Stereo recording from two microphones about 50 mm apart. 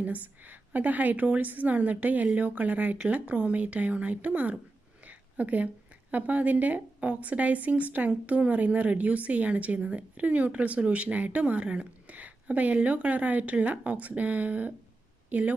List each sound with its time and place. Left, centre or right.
0.0 s a woman's voice: right
5.0 s a sound: right
6.1 s a woman's voice: right